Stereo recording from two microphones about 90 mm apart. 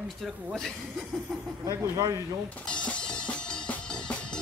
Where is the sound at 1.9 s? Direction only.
35° right (ahead or behind).